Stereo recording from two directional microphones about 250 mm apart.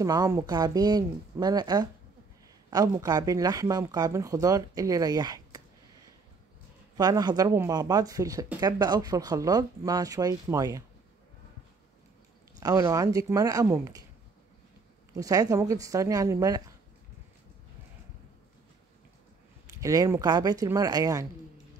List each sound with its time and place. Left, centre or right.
0.0 s speech: centre
7.0 s speech: centre
12.5 s speech: centre
15.1 s speech: centre
19.8 s speech: centre